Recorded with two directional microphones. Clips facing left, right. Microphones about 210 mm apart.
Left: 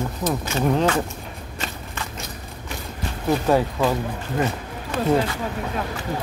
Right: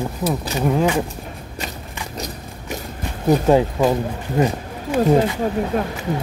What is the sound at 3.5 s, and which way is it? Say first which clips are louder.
Speech: right 3 dB; 15° right (ahead or behind).